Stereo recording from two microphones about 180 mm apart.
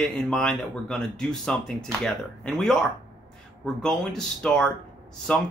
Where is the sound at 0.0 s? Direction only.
Centre (ahead or behind).